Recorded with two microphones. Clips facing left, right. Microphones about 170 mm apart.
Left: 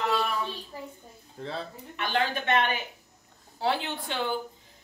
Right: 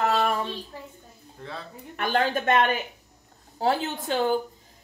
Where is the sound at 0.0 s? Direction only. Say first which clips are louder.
Right 4 dB; 50° right (ahead or behind).